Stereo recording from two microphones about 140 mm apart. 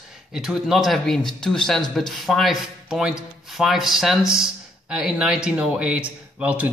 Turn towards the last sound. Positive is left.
turn(degrees=-10)  # may be behind; listen again after turning